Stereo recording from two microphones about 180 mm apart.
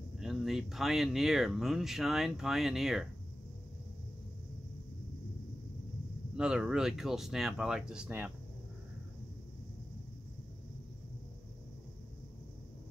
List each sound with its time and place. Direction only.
0.2 s speech: centre (ahead or behind)
6.3 s speech: 5° right (ahead or behind)